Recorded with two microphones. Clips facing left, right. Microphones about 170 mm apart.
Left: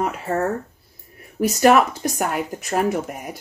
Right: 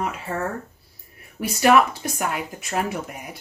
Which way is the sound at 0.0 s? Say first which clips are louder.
Left 5 dB; 45° left (ahead or behind).